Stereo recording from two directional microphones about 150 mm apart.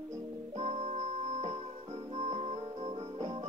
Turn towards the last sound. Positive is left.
turn(degrees=-50)  # may be behind; listen again after turning